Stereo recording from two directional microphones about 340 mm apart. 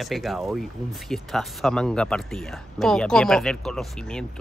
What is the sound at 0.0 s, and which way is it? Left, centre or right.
Speech, centre.